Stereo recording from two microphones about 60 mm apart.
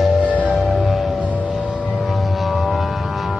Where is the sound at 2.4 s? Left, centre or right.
Centre.